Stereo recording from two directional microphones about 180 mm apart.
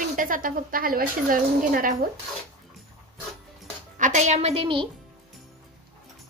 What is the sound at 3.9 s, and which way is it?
Speech, 45° right (ahead or behind).